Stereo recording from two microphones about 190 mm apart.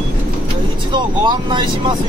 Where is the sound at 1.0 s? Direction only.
25° right (ahead or behind).